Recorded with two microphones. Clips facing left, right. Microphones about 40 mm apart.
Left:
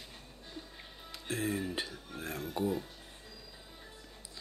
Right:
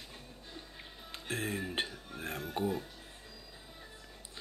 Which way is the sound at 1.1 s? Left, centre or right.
Right.